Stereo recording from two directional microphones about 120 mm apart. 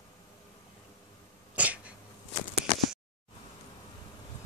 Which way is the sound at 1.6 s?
10° right (ahead or behind).